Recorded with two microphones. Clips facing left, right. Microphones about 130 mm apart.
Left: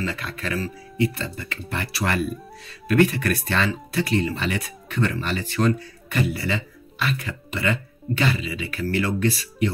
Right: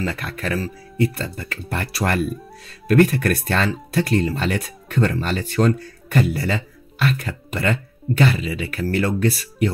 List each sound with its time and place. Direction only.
0.4 s speech: 45° right (ahead or behind)